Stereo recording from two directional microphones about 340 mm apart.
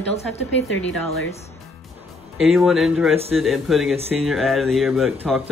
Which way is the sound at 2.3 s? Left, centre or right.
Centre.